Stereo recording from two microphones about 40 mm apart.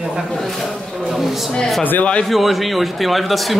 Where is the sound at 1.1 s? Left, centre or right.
Centre.